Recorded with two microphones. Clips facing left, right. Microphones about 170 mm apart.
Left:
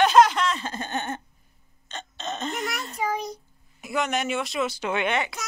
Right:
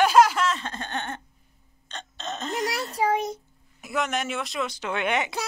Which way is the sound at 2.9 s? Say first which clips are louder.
Right 5 dB; 30° right (ahead or behind).